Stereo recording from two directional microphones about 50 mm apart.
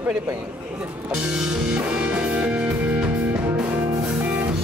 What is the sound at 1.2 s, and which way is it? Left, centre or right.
Speech, right.